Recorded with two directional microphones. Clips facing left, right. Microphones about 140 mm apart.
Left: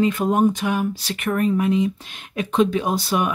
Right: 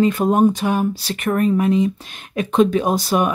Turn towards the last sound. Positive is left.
turn(degrees=-40)  # may be behind; listen again after turning